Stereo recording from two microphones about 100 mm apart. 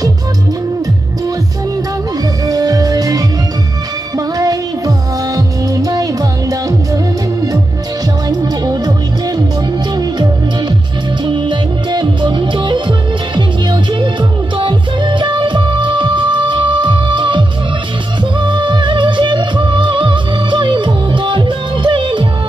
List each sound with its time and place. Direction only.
2.4 s music: 40° right (ahead or behind)
4.4 s music: 35° right (ahead or behind)
8.3 s music: 40° right (ahead or behind)
9.9 s music: 40° right (ahead or behind)
11.2 s music: 50° right (ahead or behind)